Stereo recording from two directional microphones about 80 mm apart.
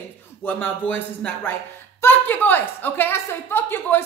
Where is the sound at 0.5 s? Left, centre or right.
Left.